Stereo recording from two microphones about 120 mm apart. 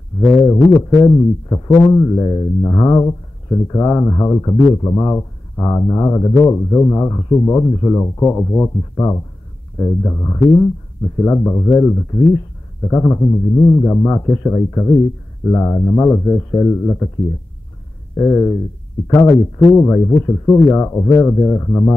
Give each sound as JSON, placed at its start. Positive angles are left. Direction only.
{"t": 0.4, "sound": "speech", "side_deg": 30}
{"t": 13.1, "sound": "a man's voice", "side_deg": 15}
{"t": 13.7, "sound": "speech", "side_deg": 25}
{"t": 18.1, "sound": "speech", "side_deg": 25}